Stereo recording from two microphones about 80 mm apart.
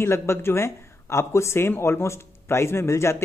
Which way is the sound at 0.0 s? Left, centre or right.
Left.